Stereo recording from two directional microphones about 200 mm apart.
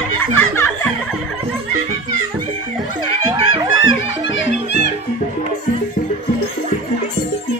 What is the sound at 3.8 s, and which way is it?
Music, 75° left (ahead or behind).